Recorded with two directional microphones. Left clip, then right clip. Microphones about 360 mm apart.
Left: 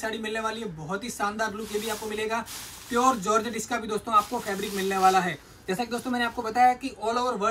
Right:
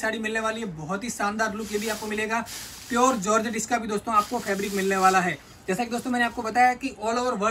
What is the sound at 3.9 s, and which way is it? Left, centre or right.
A man's voice, centre.